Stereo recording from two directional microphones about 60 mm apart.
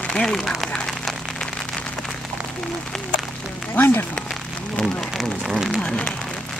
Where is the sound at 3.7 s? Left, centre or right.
Left.